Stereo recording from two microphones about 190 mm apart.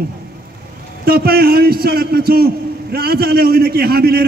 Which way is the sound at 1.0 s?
55° right (ahead or behind).